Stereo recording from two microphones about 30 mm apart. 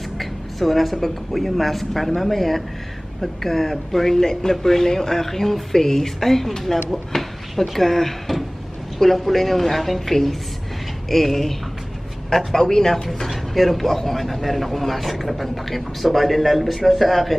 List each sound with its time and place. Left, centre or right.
0.2 s a sound: centre
1.0 s a man's voice: centre
12.5 s speech: centre
13.3 s a man's voice: centre